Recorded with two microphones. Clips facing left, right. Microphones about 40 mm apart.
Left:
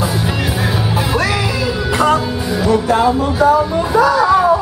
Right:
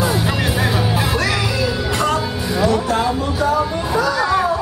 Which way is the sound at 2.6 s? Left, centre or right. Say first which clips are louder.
Left 4 dB; centre.